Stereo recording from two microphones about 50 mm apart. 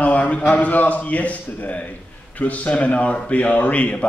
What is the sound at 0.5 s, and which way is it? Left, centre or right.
A man's voice, left.